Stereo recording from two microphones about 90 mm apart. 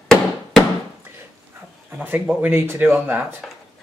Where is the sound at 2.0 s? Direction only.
20° right (ahead or behind).